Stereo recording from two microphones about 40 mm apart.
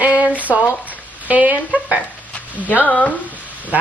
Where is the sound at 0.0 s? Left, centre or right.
Right.